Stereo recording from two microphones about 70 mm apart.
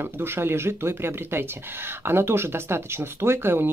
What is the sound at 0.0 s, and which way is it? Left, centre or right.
Speech, right.